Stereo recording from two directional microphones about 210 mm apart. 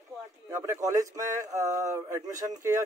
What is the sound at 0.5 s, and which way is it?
Speech, 15° right (ahead or behind).